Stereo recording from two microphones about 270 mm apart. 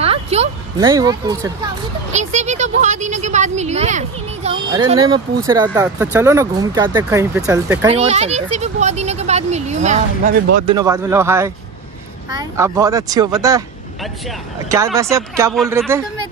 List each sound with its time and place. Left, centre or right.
0.0 s speech: right
2.1 s speech: right
7.9 s speech: right
10.7 s speech: centre
15.0 s speech: centre